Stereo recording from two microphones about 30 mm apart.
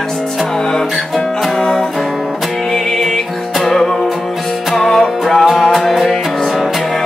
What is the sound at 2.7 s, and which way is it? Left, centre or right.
Music, centre.